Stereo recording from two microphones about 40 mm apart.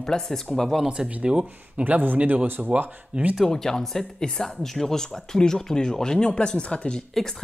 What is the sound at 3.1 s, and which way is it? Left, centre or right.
Speech, right.